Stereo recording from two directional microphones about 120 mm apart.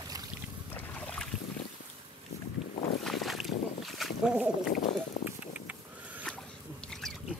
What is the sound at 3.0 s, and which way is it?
Boat, centre (ahead or behind).